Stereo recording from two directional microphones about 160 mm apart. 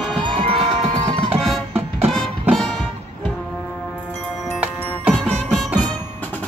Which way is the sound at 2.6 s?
5° left (ahead or behind).